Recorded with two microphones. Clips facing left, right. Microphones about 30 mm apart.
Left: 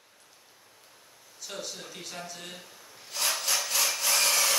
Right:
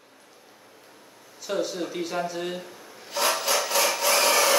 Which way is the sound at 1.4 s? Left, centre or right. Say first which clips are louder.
Right 11 dB; centre.